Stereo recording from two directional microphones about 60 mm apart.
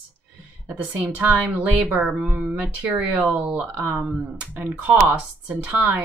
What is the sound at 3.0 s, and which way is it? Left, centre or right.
Speech, right.